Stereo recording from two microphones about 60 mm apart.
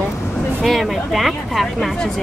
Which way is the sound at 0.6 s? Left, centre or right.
Centre.